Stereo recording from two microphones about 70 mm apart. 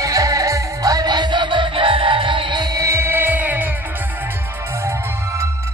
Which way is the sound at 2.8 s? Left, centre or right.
Right.